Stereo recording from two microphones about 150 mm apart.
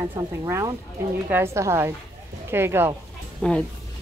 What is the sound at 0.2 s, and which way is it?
A woman's voice, 20° right (ahead or behind).